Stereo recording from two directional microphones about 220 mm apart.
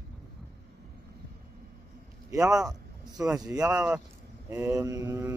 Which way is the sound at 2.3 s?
15° right (ahead or behind).